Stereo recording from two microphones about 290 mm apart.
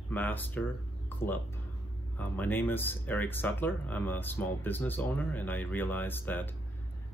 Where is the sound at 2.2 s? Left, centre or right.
Centre.